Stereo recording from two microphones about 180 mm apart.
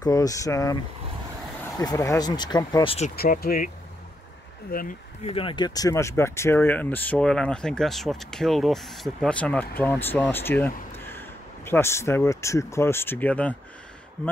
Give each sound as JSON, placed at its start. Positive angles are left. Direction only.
{"t": 0.0, "sound": "speech", "side_deg": 20}
{"t": 1.8, "sound": "speech", "side_deg": 20}
{"t": 3.2, "sound": "speech", "side_deg": 55}
{"t": 5.2, "sound": "speech", "side_deg": 30}